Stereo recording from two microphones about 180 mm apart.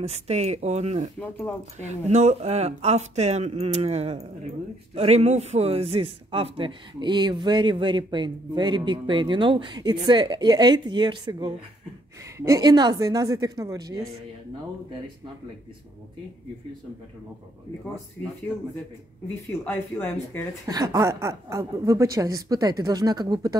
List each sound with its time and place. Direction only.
0.0 s speech: 35° right (ahead or behind)
1.2 s speech: 10° left (ahead or behind)
1.8 s speech: 40° right (ahead or behind); by 14.1 s 20° right (ahead or behind)
19.6 s speech: 10° left (ahead or behind)
20.6 s speech: 20° right (ahead or behind)